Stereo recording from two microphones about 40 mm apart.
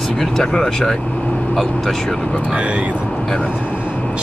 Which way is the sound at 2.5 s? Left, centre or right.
Right.